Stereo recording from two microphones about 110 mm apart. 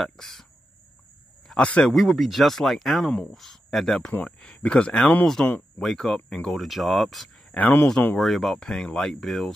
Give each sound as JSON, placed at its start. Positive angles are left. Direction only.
{"t": 0.0, "sound": "speech", "side_deg": 0}
{"t": 1.5, "sound": "speech", "side_deg": 10}
{"t": 1.9, "sound": "speech", "side_deg": 0}
{"t": 7.5, "sound": "speech", "side_deg": 15}
{"t": 8.2, "sound": "speech", "side_deg": 0}